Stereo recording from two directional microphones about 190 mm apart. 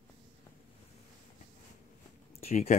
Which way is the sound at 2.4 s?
35° left (ahead or behind).